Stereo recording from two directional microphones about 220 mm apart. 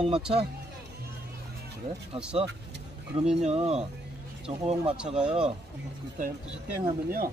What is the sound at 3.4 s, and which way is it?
Speech, 30° right (ahead or behind).